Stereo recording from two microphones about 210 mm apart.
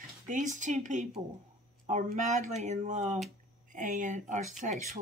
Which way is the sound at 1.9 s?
35° right (ahead or behind).